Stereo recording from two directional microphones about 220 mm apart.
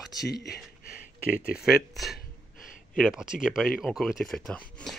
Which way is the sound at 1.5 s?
Centre (ahead or behind).